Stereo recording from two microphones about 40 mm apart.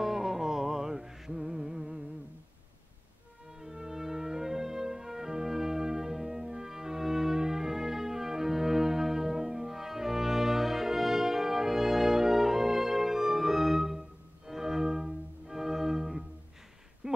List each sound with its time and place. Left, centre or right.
0.0 s music: centre
3.5 s music: centre
17.0 s a sound: right